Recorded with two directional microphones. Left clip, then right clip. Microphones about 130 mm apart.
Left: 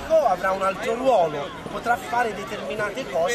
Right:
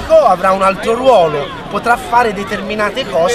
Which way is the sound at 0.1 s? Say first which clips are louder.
Right 11 dB; 25° right (ahead or behind).